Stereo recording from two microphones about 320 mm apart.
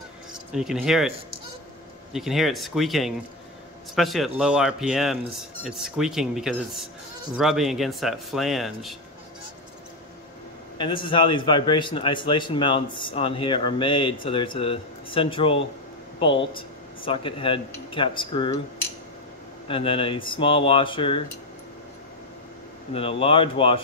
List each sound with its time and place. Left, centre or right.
0.3 s speech: centre
2.1 s speech: centre
10.8 s a man's voice: centre
19.7 s a man's voice: centre
22.9 s a man's voice: centre